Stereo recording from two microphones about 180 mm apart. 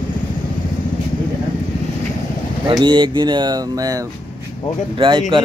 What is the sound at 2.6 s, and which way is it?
Speech, 25° right (ahead or behind).